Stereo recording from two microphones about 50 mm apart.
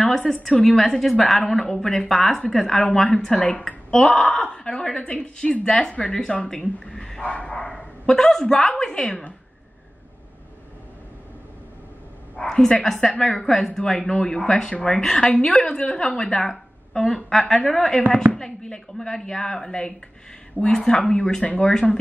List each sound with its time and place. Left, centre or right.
0.3 s a woman's voice: centre
7.2 s a woman's voice: left
8.1 s speech: centre
12.4 s a woman's voice: centre